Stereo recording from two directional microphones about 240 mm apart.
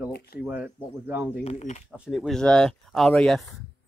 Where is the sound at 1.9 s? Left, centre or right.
Centre.